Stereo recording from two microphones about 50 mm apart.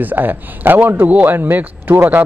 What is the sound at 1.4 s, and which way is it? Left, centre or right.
Speech, right.